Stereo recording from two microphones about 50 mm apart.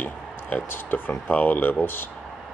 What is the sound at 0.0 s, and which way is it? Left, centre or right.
Speech, left.